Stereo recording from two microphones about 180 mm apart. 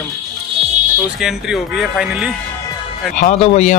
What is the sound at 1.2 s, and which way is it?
Speech, 5° right (ahead or behind).